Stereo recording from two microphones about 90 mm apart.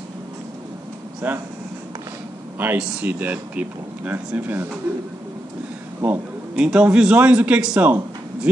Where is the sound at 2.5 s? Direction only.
20° right (ahead or behind).